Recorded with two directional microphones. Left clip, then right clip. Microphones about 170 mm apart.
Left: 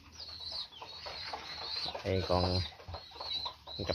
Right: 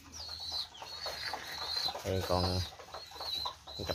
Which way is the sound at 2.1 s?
20° left (ahead or behind).